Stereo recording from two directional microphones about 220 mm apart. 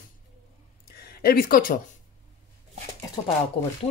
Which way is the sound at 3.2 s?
15° left (ahead or behind).